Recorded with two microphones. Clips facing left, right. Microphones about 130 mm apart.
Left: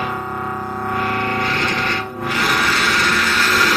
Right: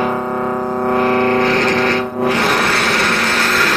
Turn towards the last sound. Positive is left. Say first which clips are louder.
# right 2 dB
turn(degrees=-35)  # may be behind; listen again after turning